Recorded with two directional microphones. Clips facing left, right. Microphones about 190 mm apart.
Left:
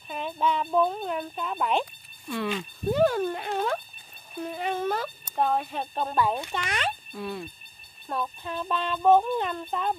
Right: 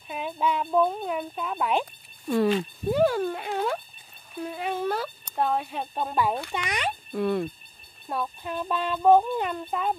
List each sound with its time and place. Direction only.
0.1 s speech: 5° right (ahead or behind)
2.2 s speech: 40° right (ahead or behind)
2.9 s speech: 5° right (ahead or behind)
7.2 s speech: 60° right (ahead or behind)
8.1 s speech: 10° right (ahead or behind)